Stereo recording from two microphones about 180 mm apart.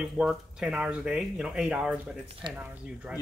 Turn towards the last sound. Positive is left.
turn(degrees=-5)  # may be behind; listen again after turning